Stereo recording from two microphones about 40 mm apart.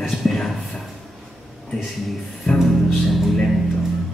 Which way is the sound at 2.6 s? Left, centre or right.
Centre.